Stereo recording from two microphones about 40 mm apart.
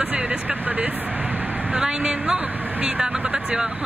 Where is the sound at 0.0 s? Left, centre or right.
Right.